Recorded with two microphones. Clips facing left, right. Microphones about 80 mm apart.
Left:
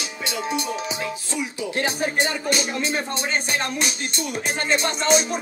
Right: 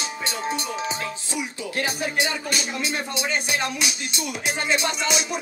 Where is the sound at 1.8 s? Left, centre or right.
Left.